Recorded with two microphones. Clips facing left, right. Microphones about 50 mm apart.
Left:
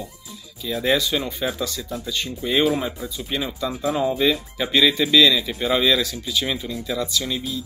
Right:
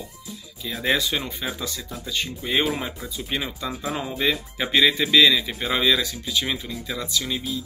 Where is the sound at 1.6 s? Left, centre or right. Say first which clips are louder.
Left 4 dB; right.